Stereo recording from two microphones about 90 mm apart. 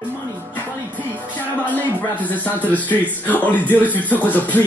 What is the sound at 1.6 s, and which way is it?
Speech, 20° left (ahead or behind).